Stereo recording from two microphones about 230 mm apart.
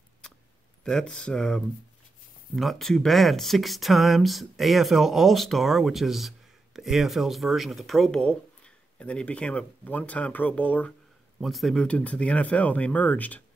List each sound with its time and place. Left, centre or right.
0.8 s speech: centre